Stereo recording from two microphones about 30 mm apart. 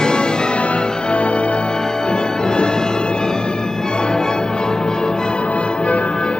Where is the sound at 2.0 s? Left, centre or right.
Left.